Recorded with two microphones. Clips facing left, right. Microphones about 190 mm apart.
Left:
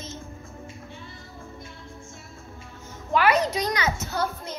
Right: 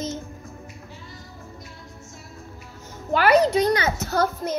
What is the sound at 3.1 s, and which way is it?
A child's voice, 35° right (ahead or behind).